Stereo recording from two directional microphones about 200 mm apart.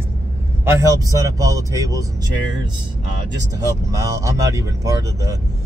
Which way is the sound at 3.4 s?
15° right (ahead or behind).